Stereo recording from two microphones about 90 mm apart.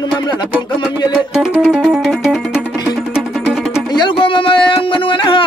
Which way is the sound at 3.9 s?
65° left (ahead or behind).